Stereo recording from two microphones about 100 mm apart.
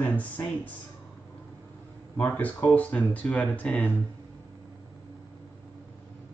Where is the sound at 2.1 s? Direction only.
15° left (ahead or behind).